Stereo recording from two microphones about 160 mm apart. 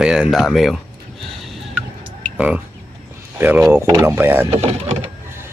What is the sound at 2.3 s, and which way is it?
A man's voice, 10° right (ahead or behind).